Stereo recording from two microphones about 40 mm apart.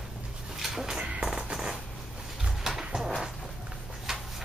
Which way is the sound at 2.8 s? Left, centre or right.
Centre.